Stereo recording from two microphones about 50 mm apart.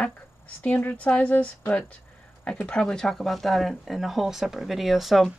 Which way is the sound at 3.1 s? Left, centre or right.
Centre.